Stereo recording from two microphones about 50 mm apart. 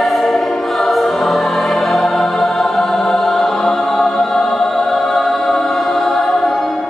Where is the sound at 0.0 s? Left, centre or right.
Centre.